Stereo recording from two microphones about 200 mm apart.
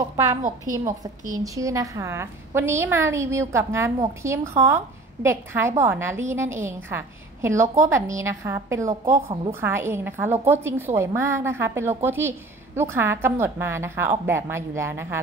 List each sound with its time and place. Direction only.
0.1 s a woman's voice: 15° right (ahead or behind)